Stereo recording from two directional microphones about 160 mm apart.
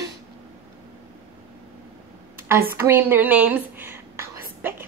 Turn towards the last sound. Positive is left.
turn(degrees=-15)  # may be behind; listen again after turning